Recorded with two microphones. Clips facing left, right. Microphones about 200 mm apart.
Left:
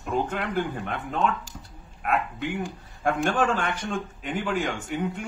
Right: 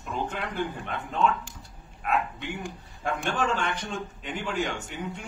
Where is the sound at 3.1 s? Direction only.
55° left (ahead or behind).